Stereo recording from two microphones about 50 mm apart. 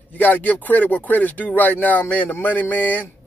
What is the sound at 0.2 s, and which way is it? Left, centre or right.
Speech, left.